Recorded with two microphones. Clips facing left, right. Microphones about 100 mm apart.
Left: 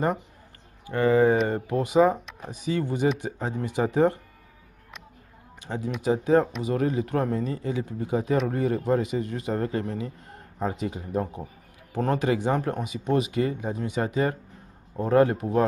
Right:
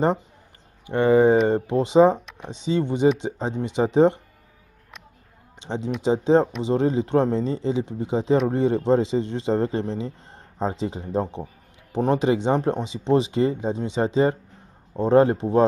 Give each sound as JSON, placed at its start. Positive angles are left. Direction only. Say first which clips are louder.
{"t": 0.8, "sound": "a man's voice", "louder": "right 3 dB", "side_deg": -20}
{"t": 5.6, "sound": "a man's voice", "louder": "right 4 dB", "side_deg": -25}